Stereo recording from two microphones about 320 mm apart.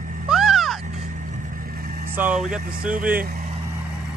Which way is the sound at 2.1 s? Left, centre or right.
Centre.